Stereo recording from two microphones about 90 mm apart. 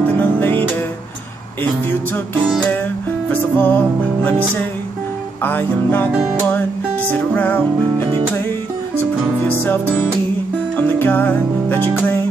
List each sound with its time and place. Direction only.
0.2 s music: 20° left (ahead or behind)
3.3 s music: 20° left (ahead or behind)
5.4 s music: 20° left (ahead or behind)
9.6 s music: 20° left (ahead or behind)